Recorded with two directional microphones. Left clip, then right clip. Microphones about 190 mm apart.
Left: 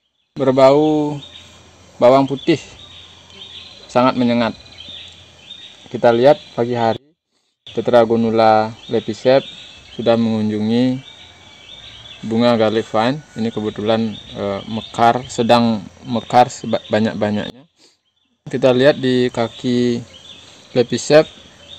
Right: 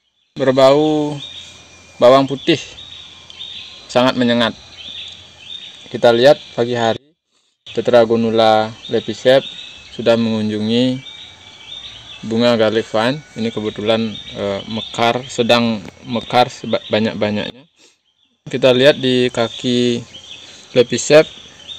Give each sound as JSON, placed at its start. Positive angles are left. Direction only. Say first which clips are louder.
{"t": 0.4, "sound": "speech", "louder": "even", "side_deg": 15}
{"t": 2.0, "sound": "speech", "louder": "right 2 dB", "side_deg": 5}
{"t": 3.8, "sound": "speech", "louder": "right 1 dB", "side_deg": 0}
{"t": 5.9, "sound": "speech", "louder": "right 1 dB", "side_deg": 5}
{"t": 12.3, "sound": "speech", "louder": "right 1 dB", "side_deg": 10}
{"t": 13.8, "sound": "speech", "louder": "right 1 dB", "side_deg": 10}
{"t": 18.5, "sound": "speech", "louder": "right 2 dB", "side_deg": 10}